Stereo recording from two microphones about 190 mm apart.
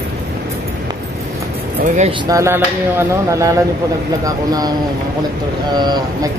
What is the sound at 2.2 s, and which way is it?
Speech, 15° right (ahead or behind).